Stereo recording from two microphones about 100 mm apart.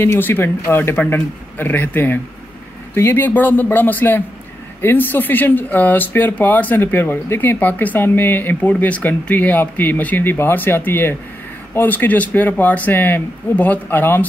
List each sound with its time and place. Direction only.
0.0 s speech: 25° left (ahead or behind)